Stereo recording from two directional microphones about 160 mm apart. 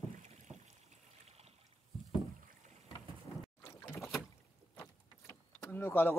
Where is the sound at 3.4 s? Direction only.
20° left (ahead or behind).